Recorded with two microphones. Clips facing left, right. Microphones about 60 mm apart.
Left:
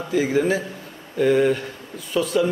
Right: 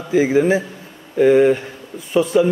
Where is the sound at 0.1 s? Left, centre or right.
Centre.